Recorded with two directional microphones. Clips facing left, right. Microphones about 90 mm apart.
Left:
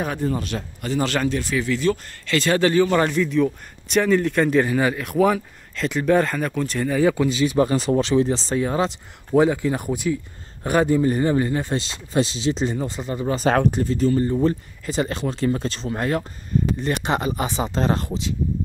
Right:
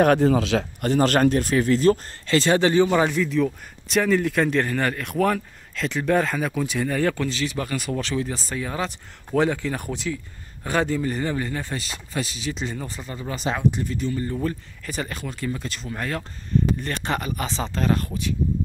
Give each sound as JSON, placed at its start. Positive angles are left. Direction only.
{"t": 0.0, "sound": "speech", "side_deg": -75}
{"t": 0.8, "sound": "speech", "side_deg": -45}
{"t": 2.3, "sound": "speech", "side_deg": -25}
{"t": 2.9, "sound": "speech", "side_deg": -5}
{"t": 7.5, "sound": "a man's voice", "side_deg": 30}
{"t": 13.4, "sound": "speech", "side_deg": 50}
{"t": 13.7, "sound": "speech", "side_deg": 40}
{"t": 14.2, "sound": "a man's voice", "side_deg": 25}
{"t": 17.7, "sound": "a man's voice", "side_deg": 25}